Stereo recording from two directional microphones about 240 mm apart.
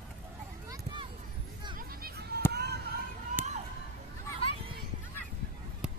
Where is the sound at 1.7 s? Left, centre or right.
Right.